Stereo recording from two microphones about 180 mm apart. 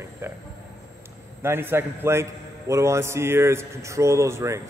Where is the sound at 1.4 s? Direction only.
15° right (ahead or behind).